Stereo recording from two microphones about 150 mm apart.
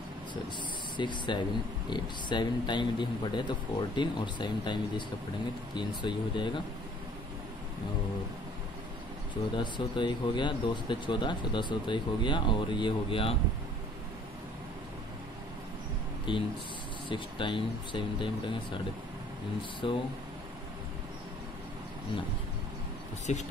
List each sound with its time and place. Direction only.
0.9 s speech: 30° left (ahead or behind)
9.3 s speech: 30° left (ahead or behind)
16.3 s speech: 30° left (ahead or behind)
19.8 s speech: 35° left (ahead or behind)